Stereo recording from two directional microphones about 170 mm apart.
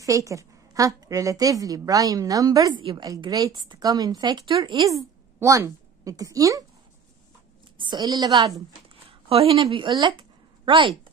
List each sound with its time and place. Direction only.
0.0 s a woman's voice: 20° right (ahead or behind)
5.4 s a woman's voice: 20° right (ahead or behind)
7.8 s a woman's voice: 25° right (ahead or behind)
9.3 s a woman's voice: 35° right (ahead or behind)